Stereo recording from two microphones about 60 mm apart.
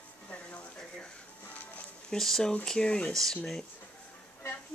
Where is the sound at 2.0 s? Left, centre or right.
Centre.